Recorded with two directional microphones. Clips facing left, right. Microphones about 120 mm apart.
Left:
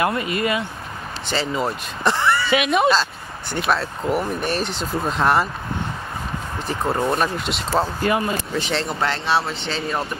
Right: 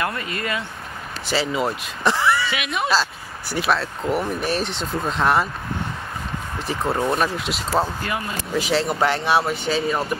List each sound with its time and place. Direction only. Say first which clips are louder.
0.0 s speech: left 5 dB; 20° left (ahead or behind)
1.2 s speech: right 1 dB; 5° right (ahead or behind)
2.5 s speech: left 8 dB; 25° left (ahead or behind)
2.9 s speech: left 2 dB; 5° right (ahead or behind)
6.7 s speech: left 1 dB; centre (ahead or behind)